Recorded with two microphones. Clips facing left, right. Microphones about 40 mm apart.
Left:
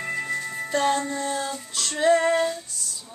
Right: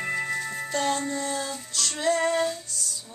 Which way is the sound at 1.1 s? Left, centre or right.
Centre.